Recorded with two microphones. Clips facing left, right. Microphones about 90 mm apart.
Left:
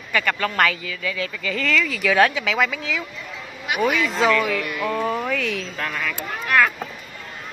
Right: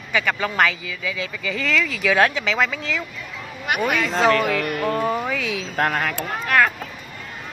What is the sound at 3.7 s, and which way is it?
Speech, 55° right (ahead or behind).